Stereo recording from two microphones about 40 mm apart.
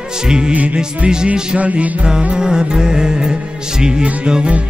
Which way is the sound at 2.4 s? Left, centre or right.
Centre.